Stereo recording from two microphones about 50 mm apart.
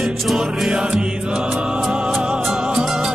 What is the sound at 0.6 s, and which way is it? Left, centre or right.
Music, centre.